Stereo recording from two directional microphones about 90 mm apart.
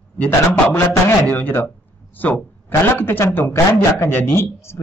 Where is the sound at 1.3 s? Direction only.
20° left (ahead or behind).